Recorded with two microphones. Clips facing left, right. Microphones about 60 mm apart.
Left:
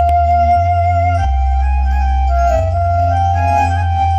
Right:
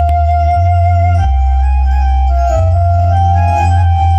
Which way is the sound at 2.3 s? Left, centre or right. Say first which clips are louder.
Left 1 dB; left.